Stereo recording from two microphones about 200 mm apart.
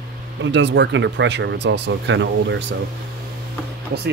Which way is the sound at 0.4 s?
60° right (ahead or behind).